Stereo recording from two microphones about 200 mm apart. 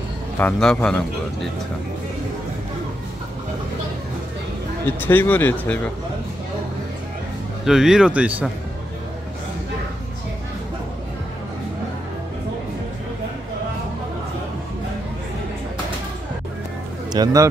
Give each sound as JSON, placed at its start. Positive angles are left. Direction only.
{"t": 0.4, "sound": "speech", "side_deg": 5}
{"t": 4.8, "sound": "speech", "side_deg": 10}
{"t": 7.6, "sound": "speech", "side_deg": 0}
{"t": 17.1, "sound": "speech", "side_deg": -20}